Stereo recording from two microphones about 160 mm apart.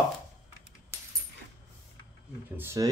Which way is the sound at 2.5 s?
15° right (ahead or behind).